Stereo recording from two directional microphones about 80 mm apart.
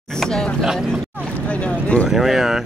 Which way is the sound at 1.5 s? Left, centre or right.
Centre.